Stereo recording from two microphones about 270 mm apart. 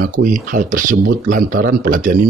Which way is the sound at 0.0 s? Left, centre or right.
Right.